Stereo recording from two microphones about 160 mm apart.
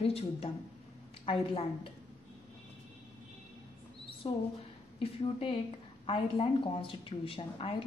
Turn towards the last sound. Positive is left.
turn(degrees=35)  # may be behind; listen again after turning